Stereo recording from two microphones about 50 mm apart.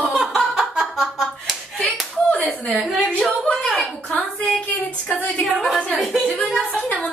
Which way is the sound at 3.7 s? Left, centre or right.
Centre.